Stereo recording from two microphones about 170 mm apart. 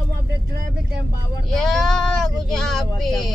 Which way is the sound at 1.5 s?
Centre (ahead or behind).